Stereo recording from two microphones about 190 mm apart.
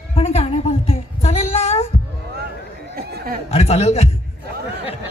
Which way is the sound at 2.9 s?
55° right (ahead or behind).